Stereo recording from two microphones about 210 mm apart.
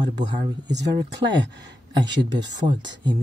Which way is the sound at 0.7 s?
55° right (ahead or behind).